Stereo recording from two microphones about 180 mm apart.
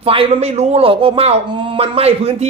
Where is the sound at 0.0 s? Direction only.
35° right (ahead or behind).